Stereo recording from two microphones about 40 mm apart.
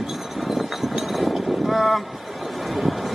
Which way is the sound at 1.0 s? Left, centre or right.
Centre.